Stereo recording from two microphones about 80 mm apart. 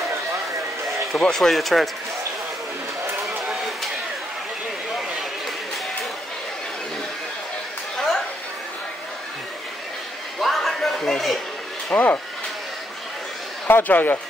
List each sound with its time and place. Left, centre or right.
1.1 s speech: centre
10.4 s a sound: centre
11.9 s a man's voice: left
13.7 s a man's voice: left